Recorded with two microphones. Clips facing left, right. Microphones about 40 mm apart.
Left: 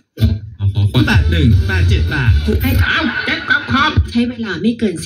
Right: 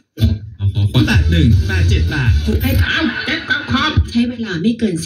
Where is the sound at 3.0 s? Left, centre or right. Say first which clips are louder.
Left 1 dB; left.